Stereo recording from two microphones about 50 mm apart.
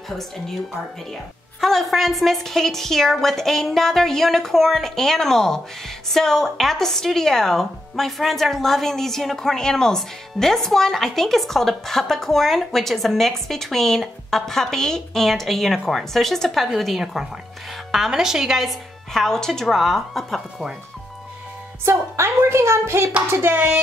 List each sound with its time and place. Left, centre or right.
1.6 s a woman's voice: centre
19.2 s a woman's voice: centre
21.8 s a woman's voice: right
23.4 s hands: right